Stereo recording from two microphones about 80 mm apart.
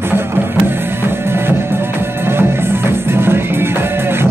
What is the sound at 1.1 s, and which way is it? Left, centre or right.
Music, right.